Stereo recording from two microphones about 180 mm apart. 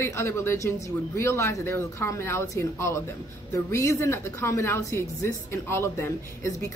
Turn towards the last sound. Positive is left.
turn(degrees=15)  # may be behind; listen again after turning